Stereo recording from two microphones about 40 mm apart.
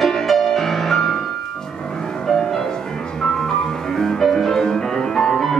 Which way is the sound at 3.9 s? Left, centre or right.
Centre.